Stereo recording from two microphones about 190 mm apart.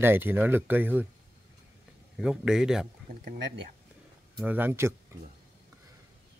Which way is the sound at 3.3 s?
70° right (ahead or behind).